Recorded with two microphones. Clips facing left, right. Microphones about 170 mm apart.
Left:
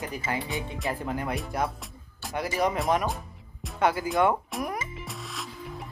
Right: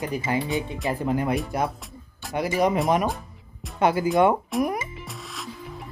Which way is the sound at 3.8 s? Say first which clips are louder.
Right 4 dB; 20° right (ahead or behind).